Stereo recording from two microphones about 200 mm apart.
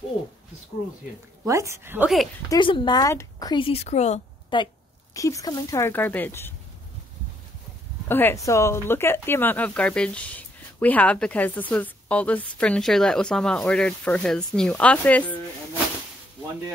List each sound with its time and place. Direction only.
1.4 s a woman's voice: 15° right (ahead or behind)
2.5 s a woman's voice: 25° left (ahead or behind)
4.5 s a woman's voice: 25° left (ahead or behind)
8.1 s speech: 10° left (ahead or behind)